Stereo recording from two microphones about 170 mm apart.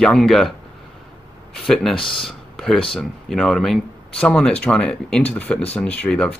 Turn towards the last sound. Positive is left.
turn(degrees=5)  # may be behind; listen again after turning